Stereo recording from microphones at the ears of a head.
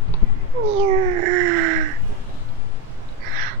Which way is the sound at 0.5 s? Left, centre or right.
Right.